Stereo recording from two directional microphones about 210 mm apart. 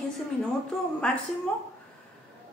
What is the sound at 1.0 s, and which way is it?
Speech, 5° left (ahead or behind).